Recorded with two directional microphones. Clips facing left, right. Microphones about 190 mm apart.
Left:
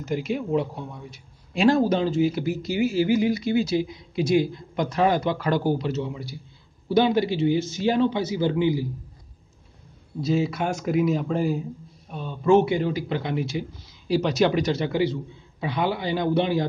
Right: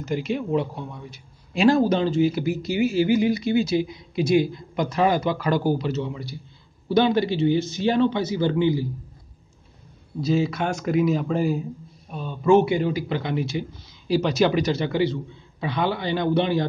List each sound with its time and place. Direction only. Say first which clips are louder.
0.0 s speech: right 1 dB; centre (ahead or behind)
2.4 s speech: right 1 dB; 20° right (ahead or behind)
4.7 s a man's voice: right 1 dB; 5° right (ahead or behind)
10.2 s speech: right 1 dB; centre (ahead or behind)
13.1 s a man's voice: right 1 dB; centre (ahead or behind)